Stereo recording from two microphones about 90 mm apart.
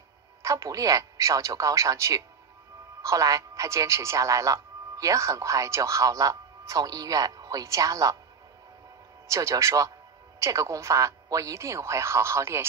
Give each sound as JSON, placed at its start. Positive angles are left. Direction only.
{"t": 0.4, "sound": "a man's voice", "side_deg": -40}
{"t": 9.3, "sound": "a man's voice", "side_deg": -35}